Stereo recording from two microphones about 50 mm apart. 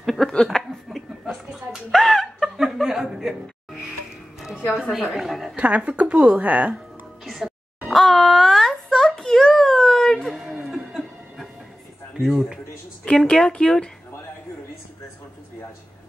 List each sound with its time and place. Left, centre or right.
0.0 s a sound: centre
0.5 s a sound: centre
1.9 s chuckle: centre
4.9 s speech: centre
5.6 s a woman's voice: right
7.2 s music: centre
7.9 s a sound: centre
10.6 s chuckle: centre
12.3 s speech: centre
13.0 s speech: centre